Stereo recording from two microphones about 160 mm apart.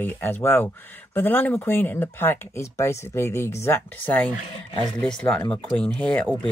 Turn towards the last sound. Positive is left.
turn(degrees=10)  # may be behind; listen again after turning